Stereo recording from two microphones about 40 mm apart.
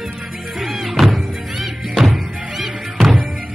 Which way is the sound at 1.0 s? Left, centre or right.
Centre.